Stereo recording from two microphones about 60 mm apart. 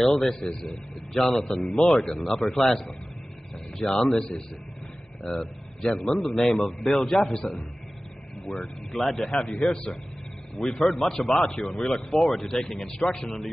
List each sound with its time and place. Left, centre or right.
0.0 s a man's voice: centre